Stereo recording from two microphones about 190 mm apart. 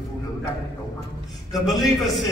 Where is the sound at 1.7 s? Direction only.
Centre (ahead or behind).